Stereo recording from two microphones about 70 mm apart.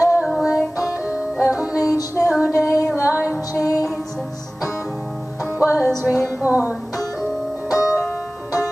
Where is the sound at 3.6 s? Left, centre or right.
Left.